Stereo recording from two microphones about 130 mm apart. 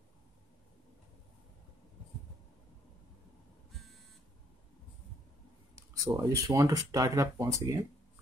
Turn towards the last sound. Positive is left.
turn(degrees=-25)  # may be behind; listen again after turning